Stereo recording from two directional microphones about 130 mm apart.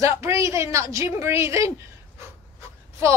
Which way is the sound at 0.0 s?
20° right (ahead or behind).